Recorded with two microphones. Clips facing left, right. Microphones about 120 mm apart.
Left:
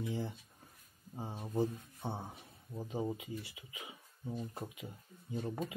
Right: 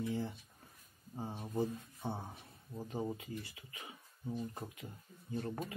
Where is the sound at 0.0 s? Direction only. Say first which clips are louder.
Right 1 dB; 15° left (ahead or behind).